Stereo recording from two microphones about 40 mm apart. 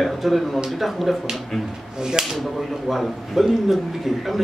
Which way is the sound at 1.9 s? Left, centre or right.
Centre.